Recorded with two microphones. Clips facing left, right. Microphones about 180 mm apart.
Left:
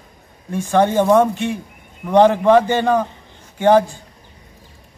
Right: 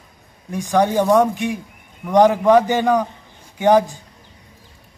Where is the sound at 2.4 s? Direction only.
Centre (ahead or behind).